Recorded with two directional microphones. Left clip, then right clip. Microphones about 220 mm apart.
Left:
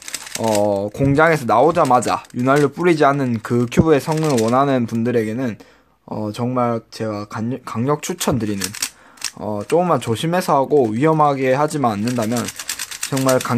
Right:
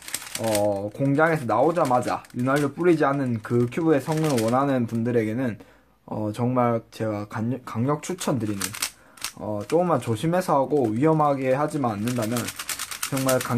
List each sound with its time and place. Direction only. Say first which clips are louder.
0.4 s speech: left 6 dB; 40° left (ahead or behind)
13.1 s speech: left 7 dB; 35° left (ahead or behind)